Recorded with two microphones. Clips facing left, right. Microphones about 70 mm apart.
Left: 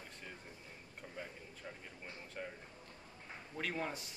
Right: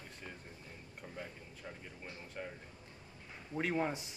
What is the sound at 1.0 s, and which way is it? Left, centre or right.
Speech, centre.